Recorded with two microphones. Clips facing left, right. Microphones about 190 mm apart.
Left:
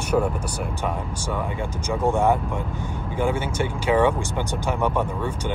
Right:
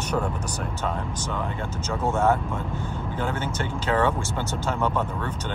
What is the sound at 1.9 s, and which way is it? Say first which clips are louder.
Speech: left 2 dB; 15° left (ahead or behind).